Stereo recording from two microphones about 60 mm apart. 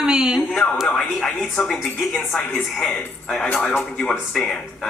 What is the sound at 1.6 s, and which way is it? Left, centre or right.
Speech, centre.